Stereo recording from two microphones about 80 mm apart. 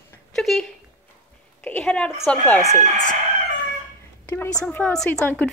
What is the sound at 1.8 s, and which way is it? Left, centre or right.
Speech, centre.